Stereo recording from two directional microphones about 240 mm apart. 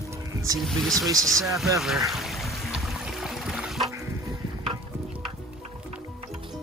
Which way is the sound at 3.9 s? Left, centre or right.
Centre.